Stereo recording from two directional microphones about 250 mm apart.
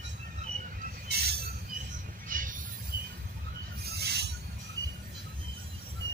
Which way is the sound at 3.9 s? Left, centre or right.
Right.